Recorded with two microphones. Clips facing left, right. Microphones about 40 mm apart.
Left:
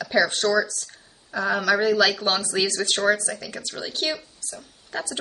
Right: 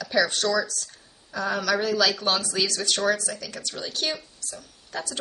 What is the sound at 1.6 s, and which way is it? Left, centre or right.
A man's voice, centre.